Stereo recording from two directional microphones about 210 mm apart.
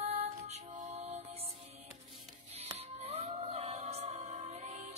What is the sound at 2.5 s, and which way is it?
Music, 30° right (ahead or behind).